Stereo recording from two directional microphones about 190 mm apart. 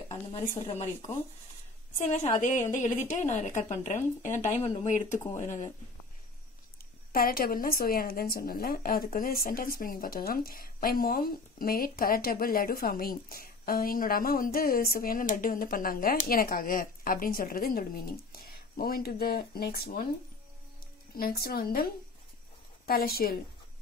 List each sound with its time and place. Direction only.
0.7 s speech: 30° left (ahead or behind)
2.7 s speech: 40° left (ahead or behind)
7.1 s speech: 50° left (ahead or behind)
21.2 s speech: 50° left (ahead or behind)
22.8 s speech: 50° left (ahead or behind)